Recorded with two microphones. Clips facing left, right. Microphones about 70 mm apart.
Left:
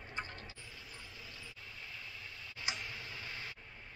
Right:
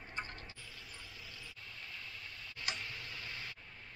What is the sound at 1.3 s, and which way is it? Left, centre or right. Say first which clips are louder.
Tick: even; centre.